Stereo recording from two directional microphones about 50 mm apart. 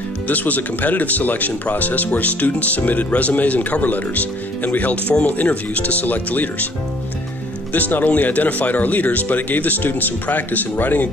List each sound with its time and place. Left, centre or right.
0.3 s speech: left
7.7 s speech: left